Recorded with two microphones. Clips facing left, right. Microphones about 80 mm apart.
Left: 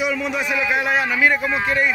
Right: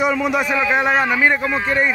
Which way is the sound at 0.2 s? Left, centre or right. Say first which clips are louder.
Right 5 dB; right.